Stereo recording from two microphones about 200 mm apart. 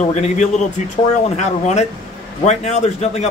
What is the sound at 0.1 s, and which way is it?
Speech, 35° left (ahead or behind).